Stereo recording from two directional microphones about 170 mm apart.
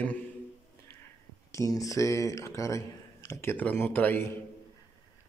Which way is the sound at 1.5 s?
20° left (ahead or behind).